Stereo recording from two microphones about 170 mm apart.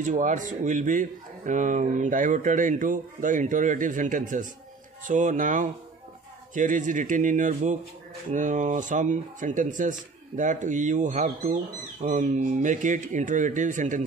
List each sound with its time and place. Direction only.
0.0 s speech: 45° right (ahead or behind)